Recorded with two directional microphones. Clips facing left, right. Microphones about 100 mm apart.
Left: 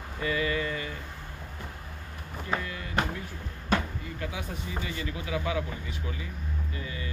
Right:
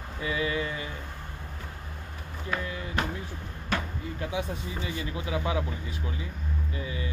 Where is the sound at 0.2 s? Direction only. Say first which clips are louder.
Left 1 dB; 20° right (ahead or behind).